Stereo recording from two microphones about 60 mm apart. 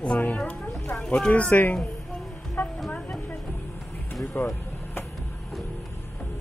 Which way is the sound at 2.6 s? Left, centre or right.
Left.